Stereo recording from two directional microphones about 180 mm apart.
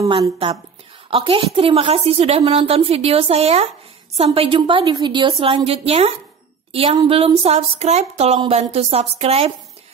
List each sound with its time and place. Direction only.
0.0 s a woman's voice: 25° right (ahead or behind)